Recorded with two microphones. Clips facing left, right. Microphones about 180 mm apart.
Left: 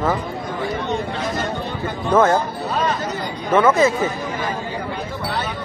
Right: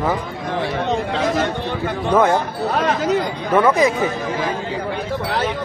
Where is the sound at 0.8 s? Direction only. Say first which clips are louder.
Right 4 dB; 90° right.